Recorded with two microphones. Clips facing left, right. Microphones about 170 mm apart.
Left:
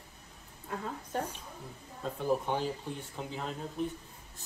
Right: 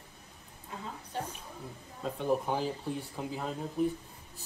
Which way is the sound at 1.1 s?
35° left (ahead or behind).